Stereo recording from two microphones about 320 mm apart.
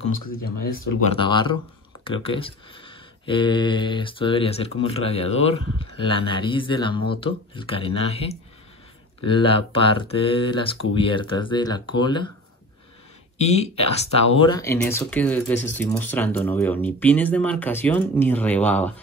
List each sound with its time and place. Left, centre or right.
1.1 s speech: centre
13.4 s speech: centre